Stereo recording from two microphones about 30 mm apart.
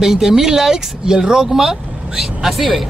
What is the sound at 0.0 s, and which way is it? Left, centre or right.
Speech, centre.